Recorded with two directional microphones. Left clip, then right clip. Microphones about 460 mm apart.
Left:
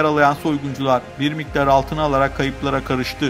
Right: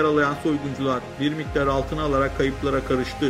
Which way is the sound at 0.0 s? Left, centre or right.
Left.